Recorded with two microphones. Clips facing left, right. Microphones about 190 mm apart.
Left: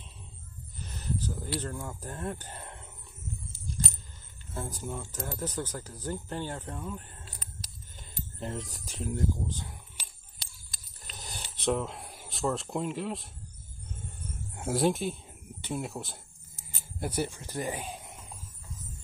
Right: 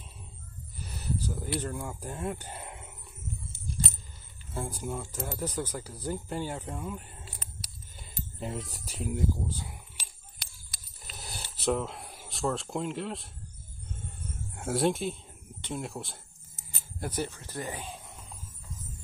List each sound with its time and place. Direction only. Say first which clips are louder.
0.7 s speech: even; 10° right (ahead or behind)
4.6 s speech: right 2 dB; 10° right (ahead or behind)
8.4 s speech: even; 5° right (ahead or behind)
11.1 s filing: right 1 dB; 5° right (ahead or behind)
14.5 s speech: even; centre (ahead or behind)